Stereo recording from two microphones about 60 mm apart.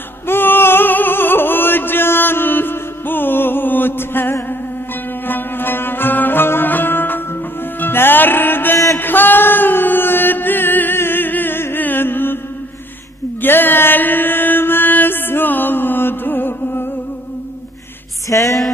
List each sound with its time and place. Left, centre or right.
0.3 s music: left
8.9 s chant: left
13.4 s mantra: left
18.3 s music: left